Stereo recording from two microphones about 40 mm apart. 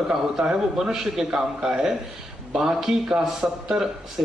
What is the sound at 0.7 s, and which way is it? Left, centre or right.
A man's voice, centre.